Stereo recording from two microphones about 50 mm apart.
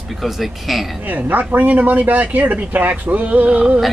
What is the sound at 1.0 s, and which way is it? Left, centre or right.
Speech, right.